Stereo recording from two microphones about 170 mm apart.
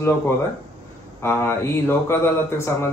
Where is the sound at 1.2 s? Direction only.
15° left (ahead or behind).